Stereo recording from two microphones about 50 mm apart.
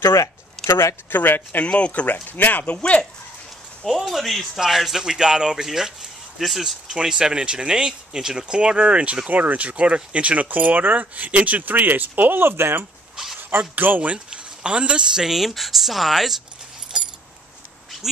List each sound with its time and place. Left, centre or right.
0.7 s speech: left
1.1 s speech: left
1.7 s speech: left
2.8 s speech: centre
3.9 s speech: centre; by 12.4 s right
12.4 s speech: right
13.1 s a sound: centre
13.4 s speech: right
14.1 s speech: right
15.2 s speech: centre
16.9 s keys jangling: centre